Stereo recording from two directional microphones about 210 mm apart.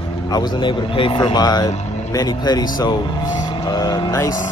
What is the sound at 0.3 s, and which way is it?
Speech, 20° left (ahead or behind).